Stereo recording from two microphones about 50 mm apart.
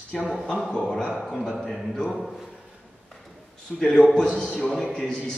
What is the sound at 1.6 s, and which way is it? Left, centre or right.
Speech, centre.